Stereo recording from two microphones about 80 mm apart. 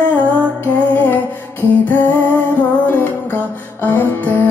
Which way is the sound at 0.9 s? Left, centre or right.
Left.